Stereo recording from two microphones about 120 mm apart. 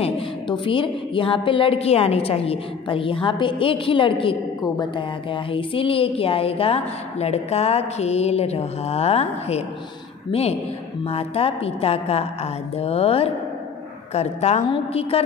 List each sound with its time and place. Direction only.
0.5 s a woman's voice: 45° left (ahead or behind); by 9.7 s 65° left (ahead or behind)
11.1 s a woman's voice: 55° left (ahead or behind)